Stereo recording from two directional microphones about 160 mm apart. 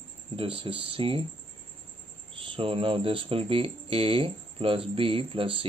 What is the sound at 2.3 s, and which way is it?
Speech, 35° right (ahead or behind).